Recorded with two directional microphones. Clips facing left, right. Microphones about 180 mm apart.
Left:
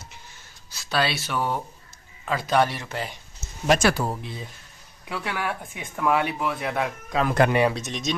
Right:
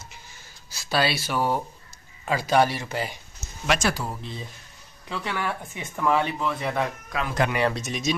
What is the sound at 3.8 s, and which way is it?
Speech, 65° left (ahead or behind).